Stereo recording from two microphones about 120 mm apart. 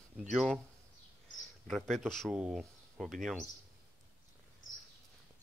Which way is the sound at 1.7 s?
5° left (ahead or behind).